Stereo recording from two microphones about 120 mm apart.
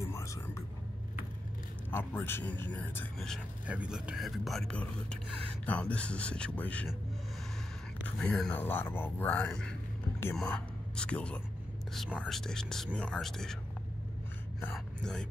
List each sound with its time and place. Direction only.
0.0 s music: 25° left (ahead or behind)
1.9 s speech: 20° left (ahead or behind)
3.6 s speech: 10° right (ahead or behind); by 6.9 s 10° left (ahead or behind)
8.2 s speech: 5° left (ahead or behind)
14.7 s speech: 5° left (ahead or behind)